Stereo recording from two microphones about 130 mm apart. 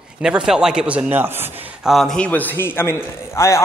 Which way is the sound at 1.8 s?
Centre (ahead or behind).